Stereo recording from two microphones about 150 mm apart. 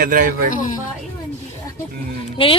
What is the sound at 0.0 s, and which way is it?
Speech, 70° right (ahead or behind).